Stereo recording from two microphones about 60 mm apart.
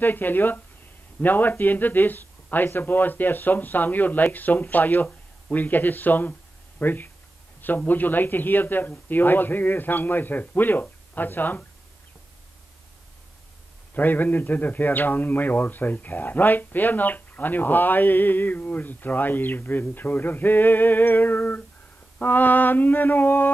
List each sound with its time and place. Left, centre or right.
0.0 s a man's voice: left
13.9 s a man's voice: left